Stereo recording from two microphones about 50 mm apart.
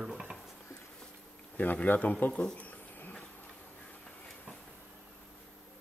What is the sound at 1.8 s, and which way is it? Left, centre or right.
Speech, left.